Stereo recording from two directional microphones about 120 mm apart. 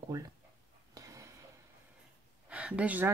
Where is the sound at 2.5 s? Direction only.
10° right (ahead or behind).